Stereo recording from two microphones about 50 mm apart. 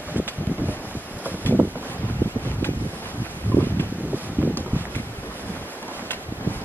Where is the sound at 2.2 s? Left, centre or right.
Left.